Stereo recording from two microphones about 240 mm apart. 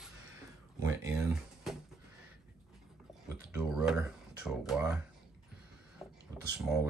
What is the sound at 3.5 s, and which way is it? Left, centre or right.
Speech, centre.